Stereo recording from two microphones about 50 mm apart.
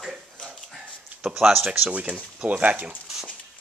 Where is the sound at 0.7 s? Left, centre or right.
Centre.